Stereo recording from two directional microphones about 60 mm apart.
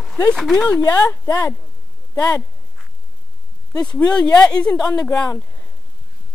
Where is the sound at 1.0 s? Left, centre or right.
Left.